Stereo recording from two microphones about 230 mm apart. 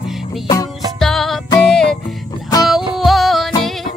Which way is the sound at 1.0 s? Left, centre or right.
Centre.